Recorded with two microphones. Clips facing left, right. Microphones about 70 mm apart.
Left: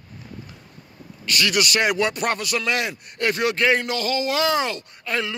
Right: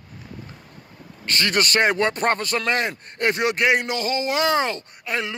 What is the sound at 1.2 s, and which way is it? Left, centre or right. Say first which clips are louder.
A man's voice: even; right.